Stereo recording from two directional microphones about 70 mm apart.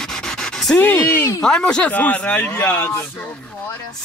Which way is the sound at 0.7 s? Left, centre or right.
Left.